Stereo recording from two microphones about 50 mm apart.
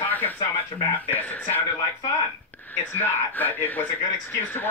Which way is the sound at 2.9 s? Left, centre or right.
Left.